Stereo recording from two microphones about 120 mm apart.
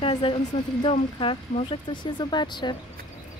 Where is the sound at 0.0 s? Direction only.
40° left (ahead or behind).